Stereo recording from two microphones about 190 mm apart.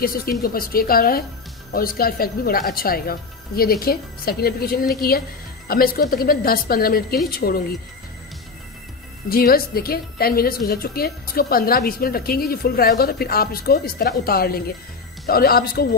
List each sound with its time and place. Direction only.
0.0 s a woman's voice: 50° left (ahead or behind)
9.3 s a woman's voice: 50° left (ahead or behind)